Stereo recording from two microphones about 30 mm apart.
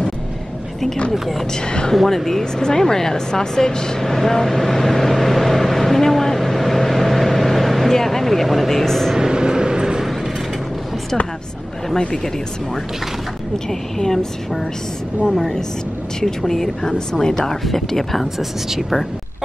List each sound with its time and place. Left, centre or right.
1.1 s speech: centre
1.5 s speech: left
2.0 s speech: centre
4.0 s vehicle: centre
8.5 s speech: centre
9.3 s vehicle: right
13.7 s speech: centre
18.7 s speech: centre